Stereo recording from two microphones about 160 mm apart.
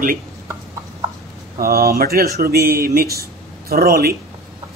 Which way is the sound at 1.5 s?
70° right (ahead or behind).